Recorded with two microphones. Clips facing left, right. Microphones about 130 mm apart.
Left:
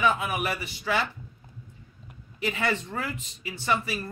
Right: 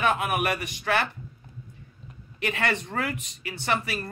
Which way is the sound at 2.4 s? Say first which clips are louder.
Even; 70° right (ahead or behind).